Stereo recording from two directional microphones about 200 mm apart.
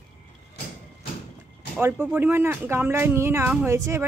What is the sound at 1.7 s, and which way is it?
Speech, 5° right (ahead or behind).